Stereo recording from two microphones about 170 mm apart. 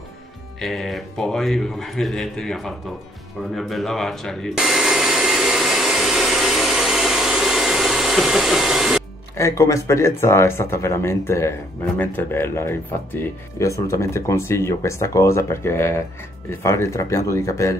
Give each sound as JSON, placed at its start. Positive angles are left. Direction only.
{"t": 0.6, "sound": "a man's voice", "side_deg": 0}
{"t": 3.5, "sound": "hair dryer", "side_deg": 0}
{"t": 9.4, "sound": "speech", "side_deg": 15}